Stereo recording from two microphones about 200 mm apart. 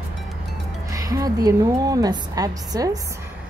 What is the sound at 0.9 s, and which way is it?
A woman's voice, 15° right (ahead or behind).